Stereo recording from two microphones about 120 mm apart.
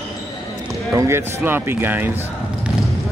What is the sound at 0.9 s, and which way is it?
Speech, 20° right (ahead or behind).